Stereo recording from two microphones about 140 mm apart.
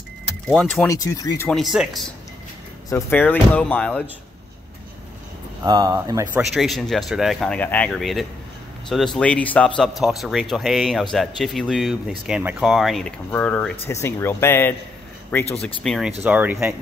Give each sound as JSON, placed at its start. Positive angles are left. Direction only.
{"t": 0.5, "sound": "speech", "side_deg": 5}
{"t": 0.8, "sound": "speech", "side_deg": 20}
{"t": 1.5, "sound": "speech", "side_deg": 0}
{"t": 2.9, "sound": "speech", "side_deg": 15}
{"t": 5.6, "sound": "speech", "side_deg": -25}
{"t": 6.5, "sound": "speech", "side_deg": 0}
{"t": 9.8, "sound": "speech", "side_deg": 0}
{"t": 13.3, "sound": "speech", "side_deg": 10}
{"t": 15.6, "sound": "speech", "side_deg": 5}
{"t": 16.2, "sound": "speech", "side_deg": -10}